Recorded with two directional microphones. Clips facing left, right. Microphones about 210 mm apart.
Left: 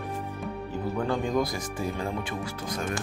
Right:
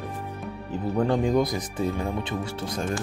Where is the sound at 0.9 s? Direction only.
25° right (ahead or behind).